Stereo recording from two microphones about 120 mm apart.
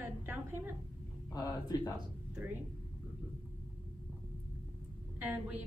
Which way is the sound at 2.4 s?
20° right (ahead or behind).